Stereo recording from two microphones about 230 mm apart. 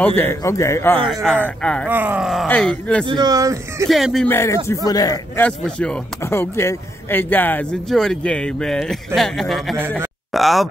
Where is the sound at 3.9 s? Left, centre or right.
Centre.